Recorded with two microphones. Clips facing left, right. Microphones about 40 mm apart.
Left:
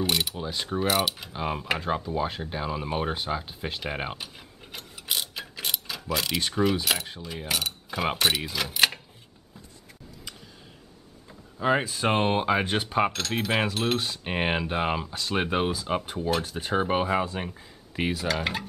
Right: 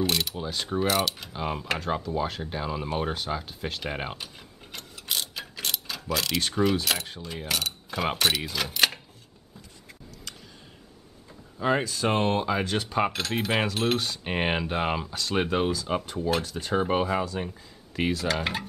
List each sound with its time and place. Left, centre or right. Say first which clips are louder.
0.0 s mechanisms: even; centre
2.1 s speech: even; centre
11.2 s power windows: left 1 dB; centre
11.8 s speech: left 1 dB; left
13.3 s a sound: even; centre
16.4 s mechanisms: even; centre
17.3 s speech: right 1 dB; left
17.9 s a sound: right 1 dB; centre